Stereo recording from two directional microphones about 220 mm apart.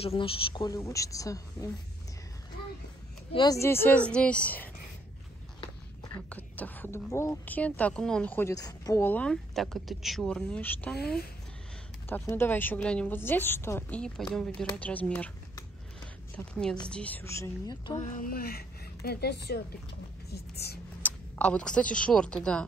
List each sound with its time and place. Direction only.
0.0 s a woman's voice: 25° left (ahead or behind)
3.3 s a woman's voice: 15° left (ahead or behind)
5.6 s a sound: 20° left (ahead or behind)
6.2 s a woman's voice: 5° left (ahead or behind)
11.0 s a woman's voice: 45° left (ahead or behind)
12.1 s a woman's voice: 10° left (ahead or behind)
18.0 s a woman's voice: 35° left (ahead or behind)
21.0 s a woman's voice: 5° left (ahead or behind)